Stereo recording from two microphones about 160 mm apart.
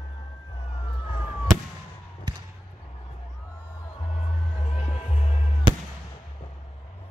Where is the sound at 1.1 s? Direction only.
40° left (ahead or behind).